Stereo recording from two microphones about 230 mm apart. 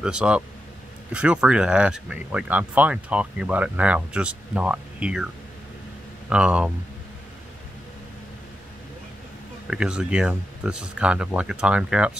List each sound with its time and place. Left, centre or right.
0.0 s speech: centre
9.7 s speech: centre